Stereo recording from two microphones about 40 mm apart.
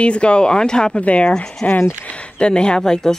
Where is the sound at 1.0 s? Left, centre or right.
Left.